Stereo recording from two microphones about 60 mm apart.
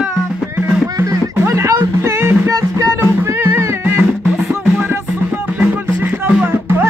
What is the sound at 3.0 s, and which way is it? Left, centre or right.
Music, right.